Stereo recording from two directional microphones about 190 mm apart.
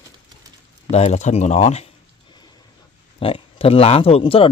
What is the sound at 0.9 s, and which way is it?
Speech, 35° left (ahead or behind).